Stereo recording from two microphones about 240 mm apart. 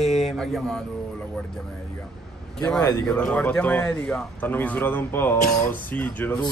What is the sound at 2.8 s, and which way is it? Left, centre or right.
Speech, centre.